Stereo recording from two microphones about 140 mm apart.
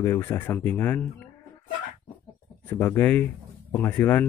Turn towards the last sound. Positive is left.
turn(degrees=15)  # may be behind; listen again after turning